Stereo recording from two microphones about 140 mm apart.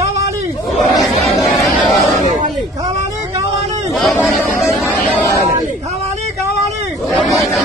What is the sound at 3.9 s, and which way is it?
Speech, centre (ahead or behind).